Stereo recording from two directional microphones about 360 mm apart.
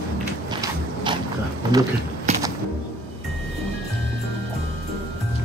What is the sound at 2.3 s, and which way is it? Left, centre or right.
Whip, centre.